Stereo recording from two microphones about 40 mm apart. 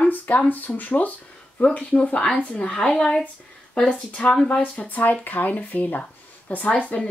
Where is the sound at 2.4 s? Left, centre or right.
Left.